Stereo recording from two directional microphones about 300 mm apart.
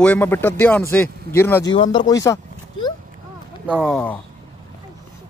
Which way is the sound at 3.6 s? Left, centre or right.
Centre.